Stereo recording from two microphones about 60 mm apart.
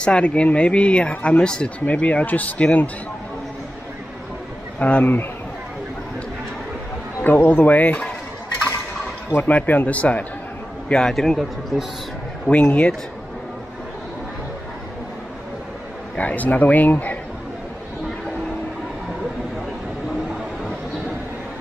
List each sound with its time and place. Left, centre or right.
0.0 s speech: centre
4.7 s speech: left
7.2 s speech: left
9.4 s speech: left
10.9 s speech: centre
12.4 s speech: left
16.2 s speech: left